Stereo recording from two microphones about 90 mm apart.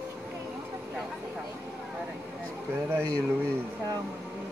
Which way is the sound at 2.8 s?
30° right (ahead or behind).